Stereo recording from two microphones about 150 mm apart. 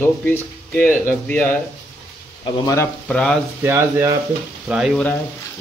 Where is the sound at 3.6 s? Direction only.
20° right (ahead or behind).